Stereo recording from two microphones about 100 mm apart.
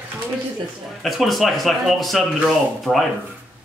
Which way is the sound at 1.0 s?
Centre (ahead or behind).